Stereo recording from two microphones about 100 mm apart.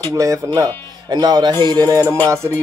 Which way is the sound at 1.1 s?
45° right (ahead or behind).